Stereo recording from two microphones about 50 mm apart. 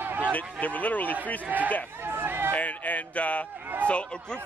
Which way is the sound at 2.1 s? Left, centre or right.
Right.